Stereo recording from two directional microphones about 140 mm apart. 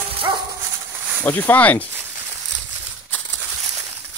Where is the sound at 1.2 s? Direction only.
10° left (ahead or behind).